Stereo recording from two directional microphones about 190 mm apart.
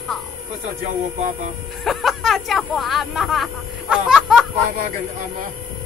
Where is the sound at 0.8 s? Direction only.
40° right (ahead or behind).